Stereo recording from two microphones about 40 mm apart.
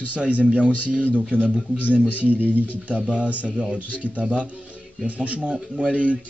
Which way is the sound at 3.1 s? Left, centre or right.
Right.